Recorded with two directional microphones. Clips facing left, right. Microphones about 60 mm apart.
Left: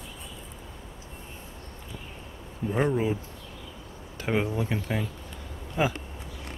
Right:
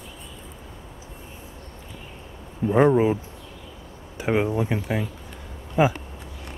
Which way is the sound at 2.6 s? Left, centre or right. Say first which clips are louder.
Right 8 dB; right.